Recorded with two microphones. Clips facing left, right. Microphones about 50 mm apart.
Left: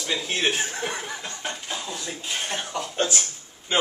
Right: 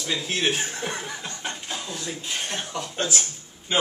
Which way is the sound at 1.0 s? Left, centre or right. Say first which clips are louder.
Even; centre.